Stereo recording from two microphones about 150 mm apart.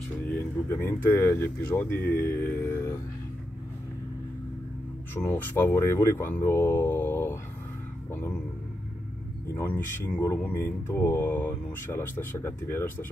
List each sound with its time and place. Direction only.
0.3 s speech: 15° left (ahead or behind)
5.1 s speech: 15° left (ahead or behind)
9.5 s speech: 15° left (ahead or behind)